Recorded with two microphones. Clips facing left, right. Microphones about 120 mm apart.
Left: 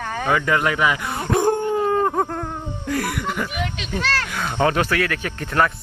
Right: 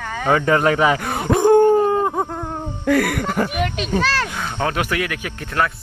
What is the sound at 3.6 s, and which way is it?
Speech, 60° right (ahead or behind).